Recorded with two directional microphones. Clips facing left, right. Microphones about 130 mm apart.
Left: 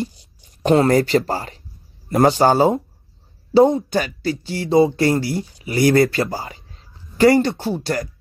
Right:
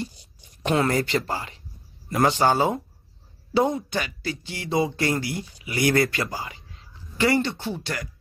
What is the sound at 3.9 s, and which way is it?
Speech, 40° left (ahead or behind).